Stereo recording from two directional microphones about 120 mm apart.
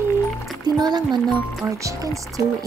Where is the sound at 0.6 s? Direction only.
35° right (ahead or behind).